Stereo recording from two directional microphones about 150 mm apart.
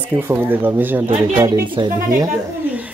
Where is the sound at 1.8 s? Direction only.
30° right (ahead or behind).